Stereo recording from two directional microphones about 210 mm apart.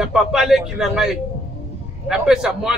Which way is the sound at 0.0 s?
Centre (ahead or behind).